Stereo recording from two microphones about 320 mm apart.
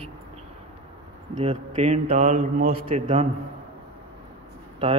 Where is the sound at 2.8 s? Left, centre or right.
Centre.